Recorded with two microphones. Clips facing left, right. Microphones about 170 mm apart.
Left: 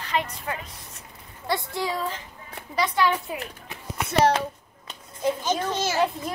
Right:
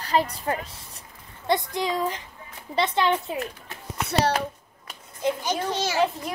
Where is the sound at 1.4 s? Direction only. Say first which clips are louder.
Right 3 dB; 20° right (ahead or behind).